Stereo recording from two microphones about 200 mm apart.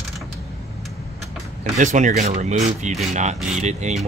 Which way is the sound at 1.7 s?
40° right (ahead or behind).